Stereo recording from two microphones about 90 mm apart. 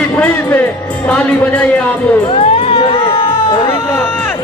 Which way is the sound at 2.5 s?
90° left.